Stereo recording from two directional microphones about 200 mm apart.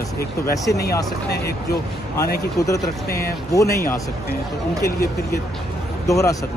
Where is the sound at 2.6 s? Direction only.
15° left (ahead or behind).